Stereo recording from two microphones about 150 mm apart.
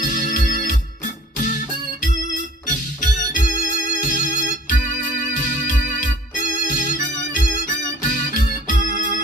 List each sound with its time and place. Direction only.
0.0 s organ: 60° left (ahead or behind)
2.6 s music: 60° left (ahead or behind)
5.3 s organ: 60° left (ahead or behind)